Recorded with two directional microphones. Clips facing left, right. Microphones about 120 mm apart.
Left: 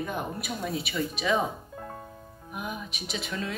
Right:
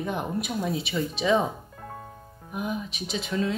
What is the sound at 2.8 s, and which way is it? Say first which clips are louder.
Speech: right 3 dB; 35° right (ahead or behind).